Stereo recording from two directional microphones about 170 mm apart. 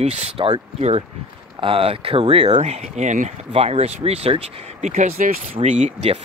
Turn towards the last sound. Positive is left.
turn(degrees=-45)  # may be behind; listen again after turning